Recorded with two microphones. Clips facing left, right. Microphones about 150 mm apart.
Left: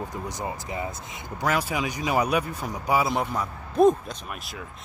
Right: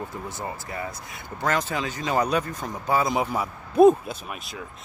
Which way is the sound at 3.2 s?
5° right (ahead or behind).